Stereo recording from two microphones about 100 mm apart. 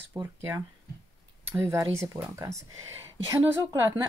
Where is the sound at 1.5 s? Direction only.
25° right (ahead or behind).